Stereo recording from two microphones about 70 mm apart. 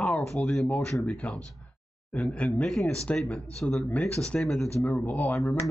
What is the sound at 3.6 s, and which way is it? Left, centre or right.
Speech, left.